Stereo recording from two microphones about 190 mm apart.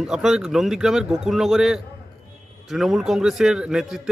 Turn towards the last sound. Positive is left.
turn(degrees=-5)  # may be behind; listen again after turning